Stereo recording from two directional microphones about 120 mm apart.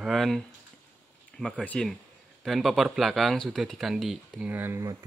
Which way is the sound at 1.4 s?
10° left (ahead or behind).